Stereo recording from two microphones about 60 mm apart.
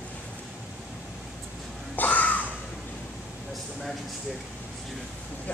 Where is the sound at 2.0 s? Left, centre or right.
Left.